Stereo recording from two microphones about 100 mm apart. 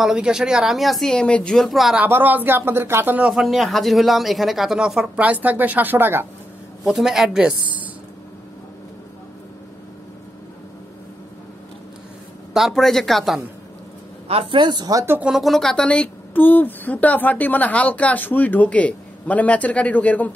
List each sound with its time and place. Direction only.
0.0 s speech: 5° right (ahead or behind)
2.0 s speech: 20° right (ahead or behind)
3.3 s speech: centre (ahead or behind); by 6.2 s 20° right (ahead or behind)
6.8 s speech: centre (ahead or behind)
12.5 s speech: centre (ahead or behind)
14.2 s a woman's voice: 80° right
14.6 s speech: 45° right (ahead or behind)
15.2 s speech: centre (ahead or behind); by 20.2 s 15° left (ahead or behind)